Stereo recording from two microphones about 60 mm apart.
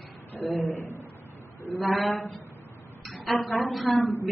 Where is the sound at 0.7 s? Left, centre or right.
Left.